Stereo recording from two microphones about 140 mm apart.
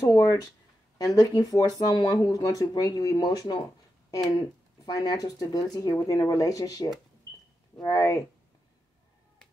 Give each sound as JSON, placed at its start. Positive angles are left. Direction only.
{"t": 0.0, "sound": "speech", "side_deg": 20}